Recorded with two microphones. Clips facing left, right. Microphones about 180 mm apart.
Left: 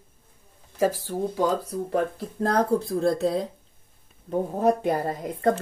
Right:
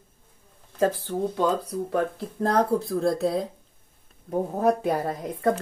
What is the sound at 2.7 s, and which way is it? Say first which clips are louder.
Speech: left 1 dB; 20° left (ahead or behind).